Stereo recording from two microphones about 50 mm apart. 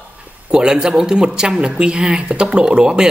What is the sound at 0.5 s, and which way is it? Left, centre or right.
Speech, centre.